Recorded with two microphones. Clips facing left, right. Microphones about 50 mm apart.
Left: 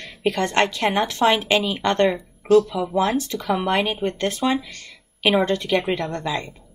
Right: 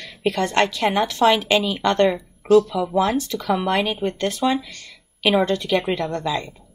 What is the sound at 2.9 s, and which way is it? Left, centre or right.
Speech, centre.